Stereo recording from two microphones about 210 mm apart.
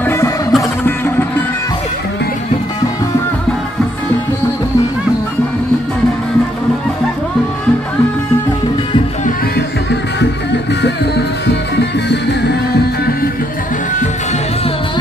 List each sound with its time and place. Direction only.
0.0 s music: 10° left (ahead or behind)
0.5 s music: centre (ahead or behind)
11.4 s music: 55° left (ahead or behind)